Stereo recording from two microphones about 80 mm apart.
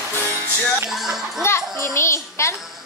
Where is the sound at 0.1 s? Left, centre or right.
Left.